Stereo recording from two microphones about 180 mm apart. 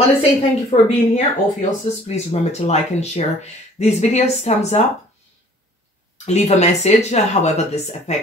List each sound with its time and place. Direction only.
0.2 s speech: 35° left (ahead or behind)
6.2 s speech: 40° left (ahead or behind)